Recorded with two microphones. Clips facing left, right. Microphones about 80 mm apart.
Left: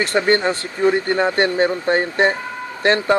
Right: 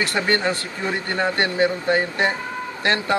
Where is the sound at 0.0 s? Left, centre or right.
Left.